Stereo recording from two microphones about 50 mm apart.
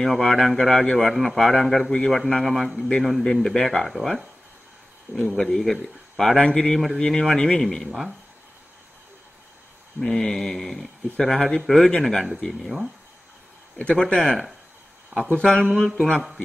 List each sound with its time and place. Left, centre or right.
0.0 s a man's voice: centre
1.9 s a man's voice: centre
2.1 s a man's voice: centre
9.9 s a man's voice: centre
12.6 s speech: centre
13.9 s a man's voice: centre
15.8 s speech: centre